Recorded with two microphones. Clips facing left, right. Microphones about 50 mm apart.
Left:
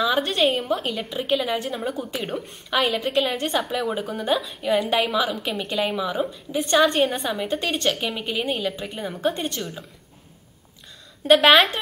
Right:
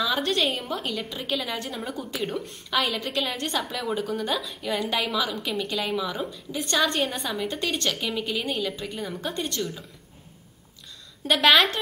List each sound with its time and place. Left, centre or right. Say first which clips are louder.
0.2 s a sound: left 3 dB; centre
0.5 s a woman's voice: left 5 dB; centre
1.9 s a woman's voice: left 3 dB; centre
11.2 s a woman's voice: left 4 dB; centre